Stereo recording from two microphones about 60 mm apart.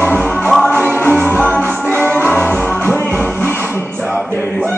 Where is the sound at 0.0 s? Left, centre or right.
Left.